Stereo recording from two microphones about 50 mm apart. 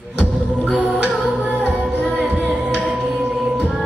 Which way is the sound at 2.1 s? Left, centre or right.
Right.